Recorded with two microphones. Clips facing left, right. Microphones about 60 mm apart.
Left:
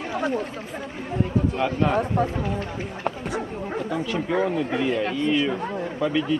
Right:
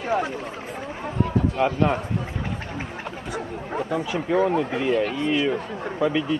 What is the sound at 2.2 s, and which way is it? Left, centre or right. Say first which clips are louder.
Speech: left 10 dB; left.